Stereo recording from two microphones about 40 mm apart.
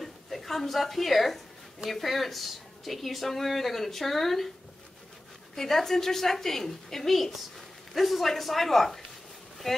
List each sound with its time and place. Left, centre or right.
0.0 s a woman's voice: centre
5.6 s a woman's voice: centre